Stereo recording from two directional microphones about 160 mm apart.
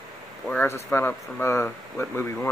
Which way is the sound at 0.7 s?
15° left (ahead or behind).